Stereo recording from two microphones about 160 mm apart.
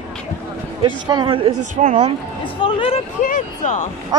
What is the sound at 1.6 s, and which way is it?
Speech, 50° right (ahead or behind).